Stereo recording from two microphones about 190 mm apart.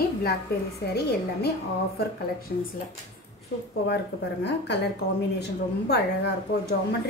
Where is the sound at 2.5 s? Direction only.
50° left (ahead or behind).